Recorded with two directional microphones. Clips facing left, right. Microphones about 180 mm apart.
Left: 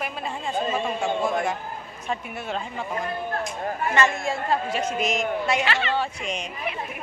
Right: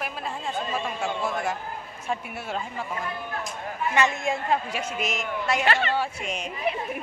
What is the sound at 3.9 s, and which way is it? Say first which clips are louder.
A woman's voice: even; 15° right (ahead or behind).